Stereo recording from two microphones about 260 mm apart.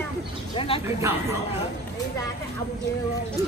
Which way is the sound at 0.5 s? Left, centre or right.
Left.